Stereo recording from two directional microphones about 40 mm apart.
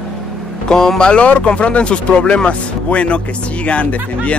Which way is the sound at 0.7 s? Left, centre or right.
Centre.